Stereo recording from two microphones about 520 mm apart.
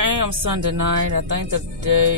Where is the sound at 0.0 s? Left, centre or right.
Right.